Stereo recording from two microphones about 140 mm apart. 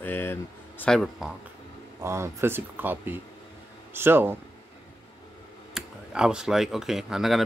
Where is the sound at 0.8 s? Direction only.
Centre (ahead or behind).